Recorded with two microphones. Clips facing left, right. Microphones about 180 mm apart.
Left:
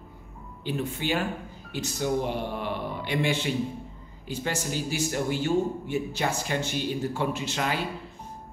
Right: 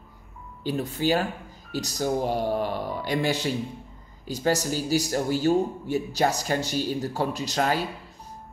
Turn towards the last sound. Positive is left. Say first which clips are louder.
# right 4 dB
turn(degrees=-40)  # may be behind; listen again after turning